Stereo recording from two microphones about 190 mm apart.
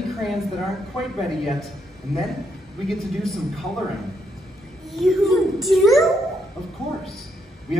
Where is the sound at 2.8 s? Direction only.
Centre (ahead or behind).